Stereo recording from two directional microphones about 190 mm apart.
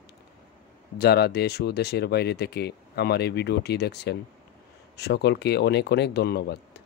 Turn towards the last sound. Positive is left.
turn(degrees=60)  # may be behind; listen again after turning